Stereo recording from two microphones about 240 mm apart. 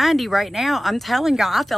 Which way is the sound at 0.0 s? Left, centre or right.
Centre.